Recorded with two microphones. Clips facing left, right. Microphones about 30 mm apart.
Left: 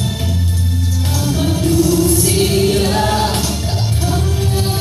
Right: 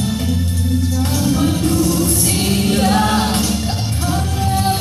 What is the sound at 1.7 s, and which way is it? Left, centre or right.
Music, right.